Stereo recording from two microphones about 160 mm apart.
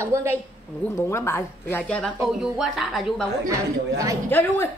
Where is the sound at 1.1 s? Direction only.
15° left (ahead or behind); by 3.2 s centre (ahead or behind).